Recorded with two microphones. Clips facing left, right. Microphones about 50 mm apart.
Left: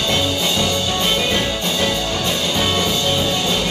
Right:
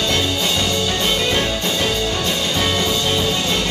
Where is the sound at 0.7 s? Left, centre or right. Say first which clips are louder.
Even; centre.